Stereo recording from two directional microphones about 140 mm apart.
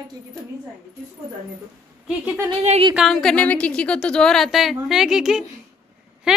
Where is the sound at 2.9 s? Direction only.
Centre (ahead or behind).